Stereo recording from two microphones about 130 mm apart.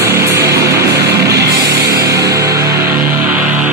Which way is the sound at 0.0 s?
20° right (ahead or behind).